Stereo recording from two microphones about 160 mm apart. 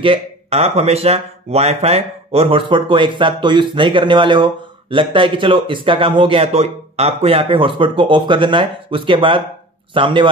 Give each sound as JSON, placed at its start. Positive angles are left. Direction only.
{"t": 0.0, "sound": "speech", "side_deg": -40}